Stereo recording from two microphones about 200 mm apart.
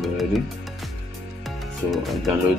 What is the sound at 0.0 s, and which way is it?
Music, centre (ahead or behind).